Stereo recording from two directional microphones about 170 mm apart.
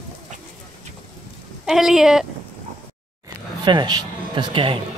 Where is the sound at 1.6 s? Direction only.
Centre (ahead or behind).